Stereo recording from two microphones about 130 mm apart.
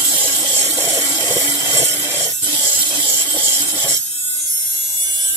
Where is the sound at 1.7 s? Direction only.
20° right (ahead or behind).